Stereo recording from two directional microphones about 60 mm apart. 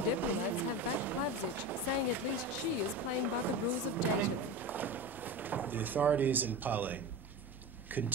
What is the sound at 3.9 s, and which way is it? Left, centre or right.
Speech, right.